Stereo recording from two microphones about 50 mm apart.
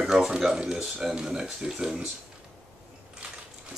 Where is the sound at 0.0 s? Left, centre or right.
Centre.